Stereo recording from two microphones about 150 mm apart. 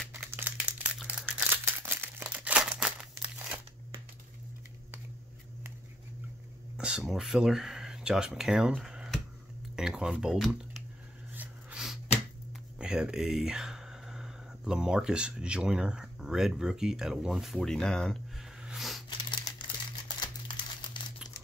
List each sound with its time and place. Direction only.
0.3 s crumpling: 10° right (ahead or behind)
6.8 s speech: 5° right (ahead or behind)
11.3 s a sound: 5° right (ahead or behind)
12.7 s speech: 5° right (ahead or behind)
19.0 s crumpling: 30° left (ahead or behind)